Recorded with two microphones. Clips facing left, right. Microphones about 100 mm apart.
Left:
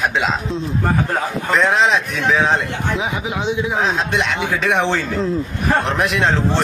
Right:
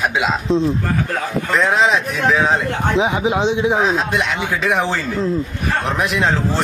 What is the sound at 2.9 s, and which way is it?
Speech, 25° right (ahead or behind).